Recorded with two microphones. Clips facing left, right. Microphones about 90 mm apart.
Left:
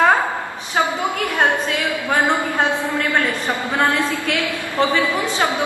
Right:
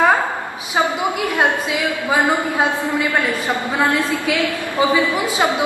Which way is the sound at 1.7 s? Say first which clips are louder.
Right 1 dB; 10° right (ahead or behind).